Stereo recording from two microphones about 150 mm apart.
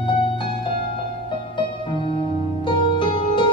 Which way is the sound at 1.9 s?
35° left (ahead or behind).